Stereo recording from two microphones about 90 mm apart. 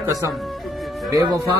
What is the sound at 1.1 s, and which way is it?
Speech, 50° right (ahead or behind).